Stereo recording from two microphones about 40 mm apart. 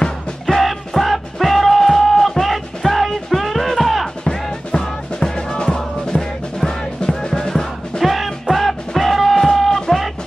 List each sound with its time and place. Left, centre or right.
0.0 s music: centre
4.2 s music: centre
8.0 s music: centre